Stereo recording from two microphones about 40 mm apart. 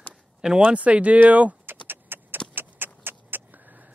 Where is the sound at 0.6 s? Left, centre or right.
Right.